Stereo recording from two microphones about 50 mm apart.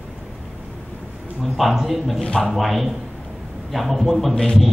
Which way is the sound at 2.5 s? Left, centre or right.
Centre.